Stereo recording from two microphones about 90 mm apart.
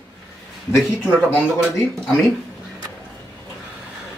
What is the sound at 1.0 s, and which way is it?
Speech, 20° left (ahead or behind).